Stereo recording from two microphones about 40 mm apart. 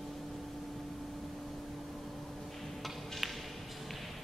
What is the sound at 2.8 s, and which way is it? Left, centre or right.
Music, centre.